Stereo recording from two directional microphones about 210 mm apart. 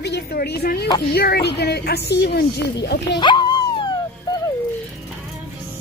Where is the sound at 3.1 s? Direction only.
20° left (ahead or behind).